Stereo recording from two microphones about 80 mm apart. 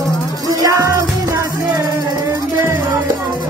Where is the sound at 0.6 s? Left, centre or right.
Right.